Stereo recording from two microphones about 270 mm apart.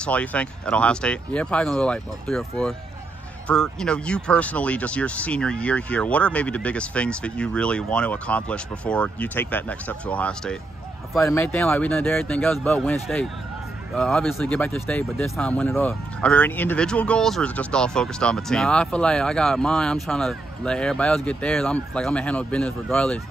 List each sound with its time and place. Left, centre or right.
0.0 s speech: centre